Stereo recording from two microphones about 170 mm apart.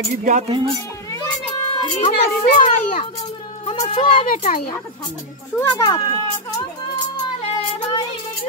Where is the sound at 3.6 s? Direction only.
35° left (ahead or behind).